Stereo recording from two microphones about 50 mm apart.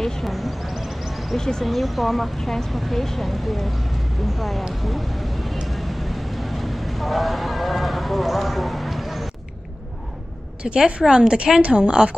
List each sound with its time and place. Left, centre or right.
0.0 s a sound: centre
1.4 s speech: centre
1.7 s speech: centre
4.8 s vehicle: centre
10.9 s a woman's voice: centre